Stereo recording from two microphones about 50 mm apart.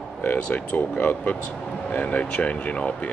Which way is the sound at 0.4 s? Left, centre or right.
Left.